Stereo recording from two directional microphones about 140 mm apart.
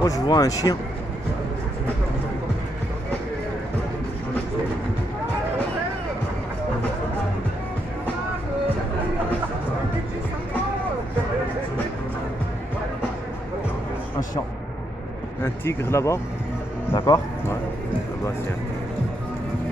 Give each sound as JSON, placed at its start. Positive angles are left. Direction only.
{"t": 0.0, "sound": "speech", "side_deg": 25}
{"t": 15.4, "sound": "speech", "side_deg": 20}